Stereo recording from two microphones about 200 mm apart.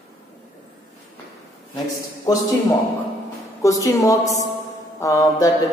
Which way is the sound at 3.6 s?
15° left (ahead or behind).